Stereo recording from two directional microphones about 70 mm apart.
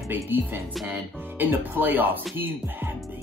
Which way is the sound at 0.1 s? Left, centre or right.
Right.